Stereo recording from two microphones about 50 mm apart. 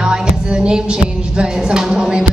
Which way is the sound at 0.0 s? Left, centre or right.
Centre.